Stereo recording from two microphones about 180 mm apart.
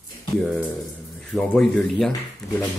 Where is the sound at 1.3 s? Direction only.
5° left (ahead or behind).